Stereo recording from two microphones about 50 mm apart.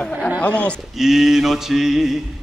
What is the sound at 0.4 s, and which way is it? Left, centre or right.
Speech, left.